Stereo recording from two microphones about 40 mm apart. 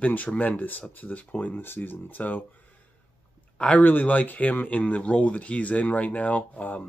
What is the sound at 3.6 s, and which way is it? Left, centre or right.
Speech, left.